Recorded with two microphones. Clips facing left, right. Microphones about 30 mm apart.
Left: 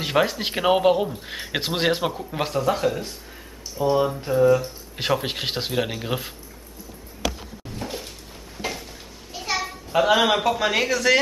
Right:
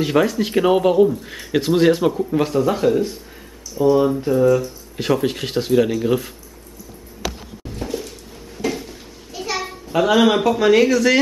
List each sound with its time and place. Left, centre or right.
0.0 s a man's voice: centre
2.6 s a man's voice: centre
4.5 s a man's voice: left
7.8 s a sound: left
8.6 s a sound: centre
9.9 s a man's voice: centre